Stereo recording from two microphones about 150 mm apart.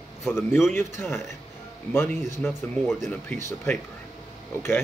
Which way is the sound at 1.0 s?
15° left (ahead or behind).